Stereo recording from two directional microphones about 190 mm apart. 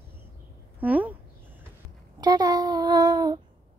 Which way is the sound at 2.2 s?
20° right (ahead or behind).